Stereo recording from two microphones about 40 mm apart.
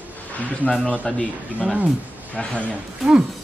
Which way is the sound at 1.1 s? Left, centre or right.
Centre.